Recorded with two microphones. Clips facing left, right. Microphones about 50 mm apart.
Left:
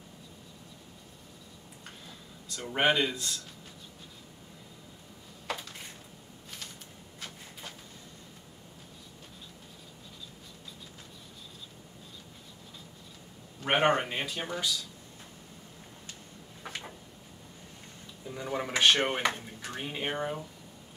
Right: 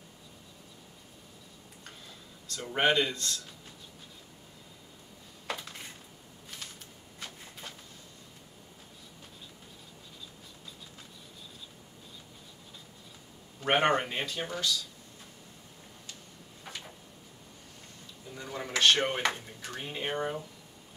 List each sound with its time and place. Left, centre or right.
2.4 s speech: centre
7.2 s a sound: centre
13.6 s a man's voice: centre
18.3 s speech: centre
20.2 s speech: centre